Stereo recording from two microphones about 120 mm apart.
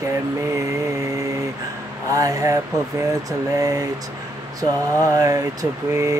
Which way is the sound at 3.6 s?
30° right (ahead or behind).